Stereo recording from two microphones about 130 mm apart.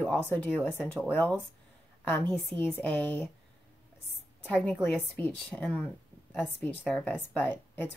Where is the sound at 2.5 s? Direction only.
35° right (ahead or behind).